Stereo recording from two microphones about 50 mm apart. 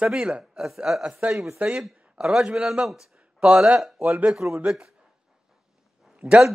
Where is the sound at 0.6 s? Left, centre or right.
Centre.